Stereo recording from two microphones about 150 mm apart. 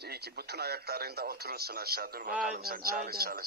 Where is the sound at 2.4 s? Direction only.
75° right (ahead or behind); by 3.4 s 90° right.